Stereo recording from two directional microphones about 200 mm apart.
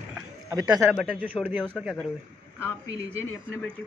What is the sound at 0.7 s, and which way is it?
A man's voice, centre (ahead or behind).